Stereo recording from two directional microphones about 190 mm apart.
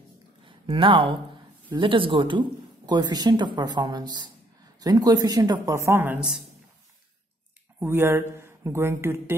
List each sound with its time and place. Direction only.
0.5 s speech: 25° right (ahead or behind); by 6.4 s 5° right (ahead or behind)
7.8 s speech: 10° right (ahead or behind)